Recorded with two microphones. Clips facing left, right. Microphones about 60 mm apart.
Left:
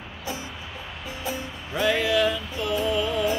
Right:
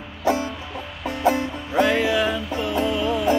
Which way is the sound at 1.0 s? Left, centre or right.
Right.